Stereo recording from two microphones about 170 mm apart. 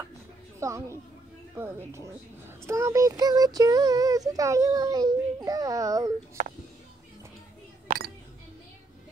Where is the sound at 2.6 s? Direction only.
15° right (ahead or behind).